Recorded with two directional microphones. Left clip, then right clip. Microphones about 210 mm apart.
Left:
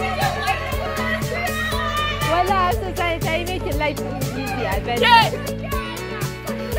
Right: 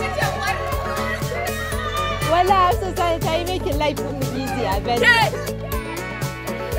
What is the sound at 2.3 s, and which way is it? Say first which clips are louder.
Music: right 4 dB; 15° right (ahead or behind).